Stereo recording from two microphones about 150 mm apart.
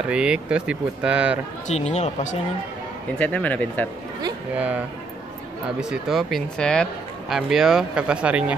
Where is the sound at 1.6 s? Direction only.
45° left (ahead or behind).